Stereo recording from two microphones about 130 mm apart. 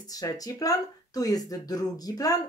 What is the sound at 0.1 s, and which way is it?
Speech, 30° left (ahead or behind).